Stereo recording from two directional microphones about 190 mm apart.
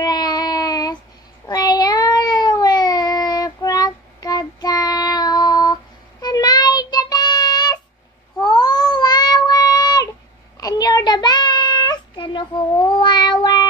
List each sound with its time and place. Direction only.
0.0 s child singing: 20° left (ahead or behind)
8.4 s cat: 20° left (ahead or behind)
10.6 s child singing: 20° left (ahead or behind)